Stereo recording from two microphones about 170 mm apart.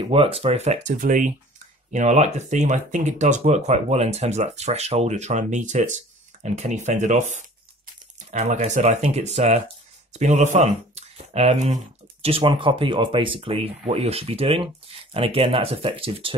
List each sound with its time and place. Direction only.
0.0 s speech: 35° right (ahead or behind)